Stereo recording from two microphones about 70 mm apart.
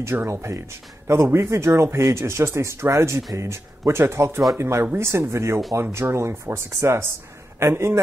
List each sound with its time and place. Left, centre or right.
0.0 s speech: right